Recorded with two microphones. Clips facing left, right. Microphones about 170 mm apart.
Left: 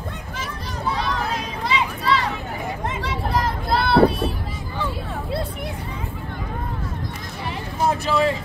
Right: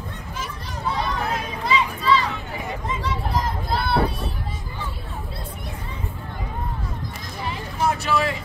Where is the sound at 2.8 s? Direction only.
80° left.